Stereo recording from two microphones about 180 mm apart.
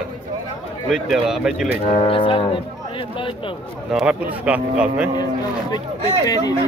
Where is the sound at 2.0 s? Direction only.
30° left (ahead or behind).